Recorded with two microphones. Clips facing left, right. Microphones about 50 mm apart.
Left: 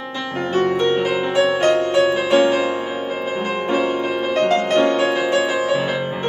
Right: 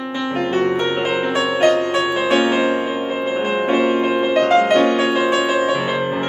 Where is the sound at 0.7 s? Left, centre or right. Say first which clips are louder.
Left 1 dB; centre.